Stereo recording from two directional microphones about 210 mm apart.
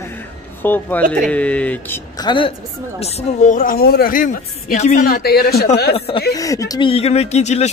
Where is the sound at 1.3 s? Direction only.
5° left (ahead or behind).